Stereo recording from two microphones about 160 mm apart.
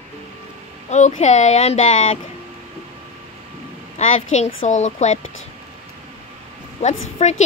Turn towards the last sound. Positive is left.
turn(degrees=45)  # may be behind; listen again after turning